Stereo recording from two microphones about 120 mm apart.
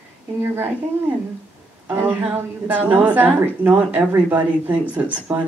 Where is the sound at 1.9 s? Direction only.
15° right (ahead or behind).